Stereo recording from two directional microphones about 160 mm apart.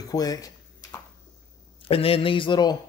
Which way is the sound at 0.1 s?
25° left (ahead or behind).